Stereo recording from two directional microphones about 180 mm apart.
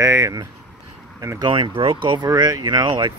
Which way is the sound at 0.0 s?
15° right (ahead or behind).